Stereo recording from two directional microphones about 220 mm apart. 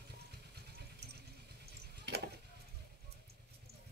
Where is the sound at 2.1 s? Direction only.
50° right (ahead or behind).